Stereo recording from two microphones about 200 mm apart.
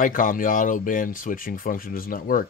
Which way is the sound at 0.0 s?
40° left (ahead or behind).